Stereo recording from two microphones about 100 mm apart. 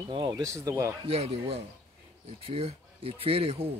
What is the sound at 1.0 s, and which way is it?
Speech, 85° right.